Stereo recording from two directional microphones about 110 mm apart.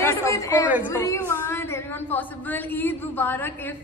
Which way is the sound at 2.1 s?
20° left (ahead or behind).